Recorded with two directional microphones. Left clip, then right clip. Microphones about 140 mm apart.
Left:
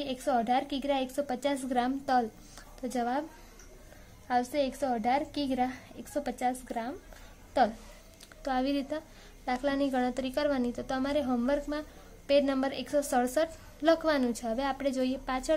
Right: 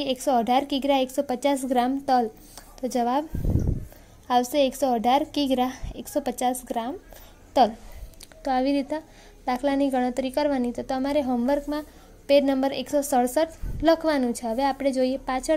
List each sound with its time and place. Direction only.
0.0 s a woman's voice: 35° right (ahead or behind)
4.3 s a woman's voice: 40° right (ahead or behind)
8.4 s a woman's voice: 30° right (ahead or behind)